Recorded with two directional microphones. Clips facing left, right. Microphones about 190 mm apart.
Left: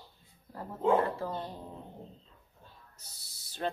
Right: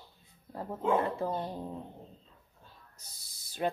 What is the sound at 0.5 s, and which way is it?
Speech, 20° right (ahead or behind).